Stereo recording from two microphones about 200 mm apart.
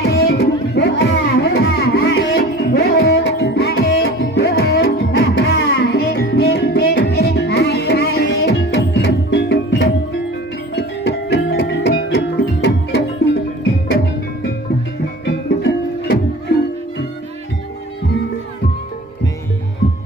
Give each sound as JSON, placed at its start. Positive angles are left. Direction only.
{"t": 0.0, "sound": "music", "side_deg": 50}